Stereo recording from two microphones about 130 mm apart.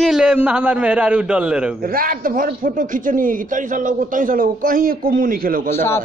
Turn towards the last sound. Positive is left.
turn(degrees=20)  # may be behind; listen again after turning